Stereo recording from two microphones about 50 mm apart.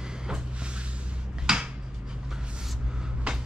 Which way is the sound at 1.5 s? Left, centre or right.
Centre.